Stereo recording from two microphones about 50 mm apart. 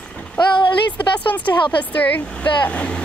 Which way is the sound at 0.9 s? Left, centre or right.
Left.